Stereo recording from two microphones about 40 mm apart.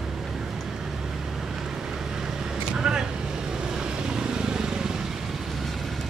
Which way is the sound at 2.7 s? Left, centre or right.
Centre.